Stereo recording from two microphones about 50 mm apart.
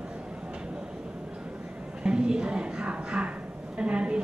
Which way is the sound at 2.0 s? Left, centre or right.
Centre.